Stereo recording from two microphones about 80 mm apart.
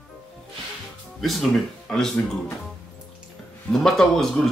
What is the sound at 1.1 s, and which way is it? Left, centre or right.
Speech, centre.